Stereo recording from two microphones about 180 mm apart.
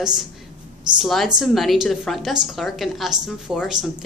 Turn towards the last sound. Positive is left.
turn(degrees=-5)  # may be behind; listen again after turning